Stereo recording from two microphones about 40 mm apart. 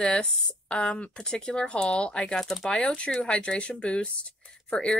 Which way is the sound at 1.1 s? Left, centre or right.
Centre.